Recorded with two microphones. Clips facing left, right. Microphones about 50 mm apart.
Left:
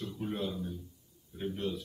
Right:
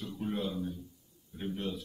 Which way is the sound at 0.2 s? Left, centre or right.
Centre.